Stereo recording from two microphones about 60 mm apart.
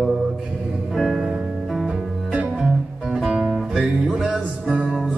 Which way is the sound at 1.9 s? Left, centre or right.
Centre.